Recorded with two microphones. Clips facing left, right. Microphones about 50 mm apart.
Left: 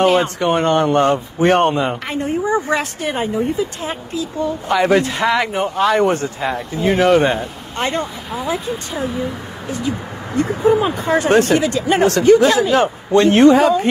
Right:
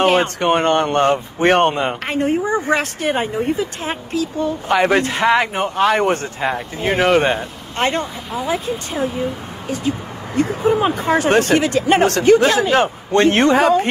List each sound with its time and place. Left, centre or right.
0.0 s speech: right
1.0 s speech: right
4.6 s speech: right
5.8 s speech: right
7.0 s speech: right
8.5 s speech: right